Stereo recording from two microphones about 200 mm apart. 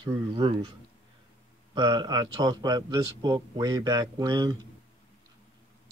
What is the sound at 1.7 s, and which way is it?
Speech, 25° right (ahead or behind).